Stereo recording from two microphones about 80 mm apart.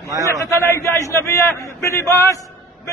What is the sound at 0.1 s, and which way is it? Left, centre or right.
Speech, right.